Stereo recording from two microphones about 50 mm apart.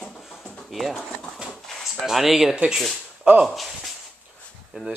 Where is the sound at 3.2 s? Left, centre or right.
Centre.